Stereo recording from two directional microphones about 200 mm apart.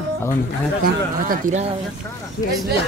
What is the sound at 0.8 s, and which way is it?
Speech, 45° right (ahead or behind).